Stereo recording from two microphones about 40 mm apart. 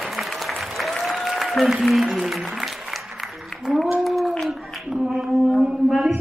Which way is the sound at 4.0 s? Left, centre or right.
Centre.